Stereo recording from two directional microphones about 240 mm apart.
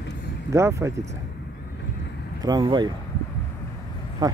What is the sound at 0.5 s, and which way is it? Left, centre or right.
Speech, centre.